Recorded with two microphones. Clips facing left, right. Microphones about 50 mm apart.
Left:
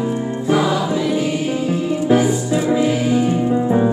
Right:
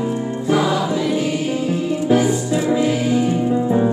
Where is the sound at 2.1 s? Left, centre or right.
Centre.